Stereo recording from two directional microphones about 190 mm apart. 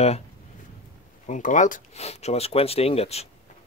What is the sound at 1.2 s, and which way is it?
Speech, 40° left (ahead or behind).